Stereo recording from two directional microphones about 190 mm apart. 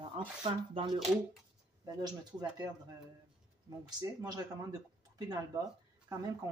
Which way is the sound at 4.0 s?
20° right (ahead or behind).